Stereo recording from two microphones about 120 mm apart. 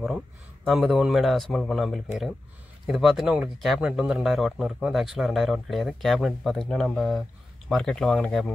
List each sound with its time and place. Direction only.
0.7 s speech: centre (ahead or behind)